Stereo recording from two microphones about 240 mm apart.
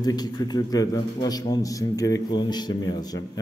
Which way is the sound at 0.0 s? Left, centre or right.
Centre.